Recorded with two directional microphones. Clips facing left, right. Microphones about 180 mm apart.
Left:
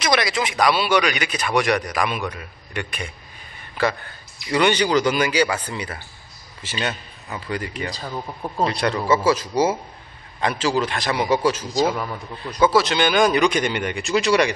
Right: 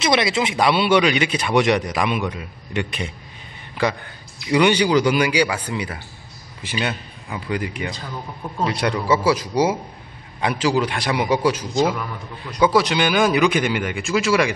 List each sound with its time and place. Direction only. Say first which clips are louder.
0.0 s a man's voice: right 2 dB; 25° right (ahead or behind); by 14.5 s 5° right (ahead or behind)